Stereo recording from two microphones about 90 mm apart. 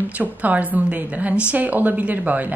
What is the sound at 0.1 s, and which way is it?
A woman's voice, 15° right (ahead or behind).